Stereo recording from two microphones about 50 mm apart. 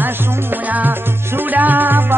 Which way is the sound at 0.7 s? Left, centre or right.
Right.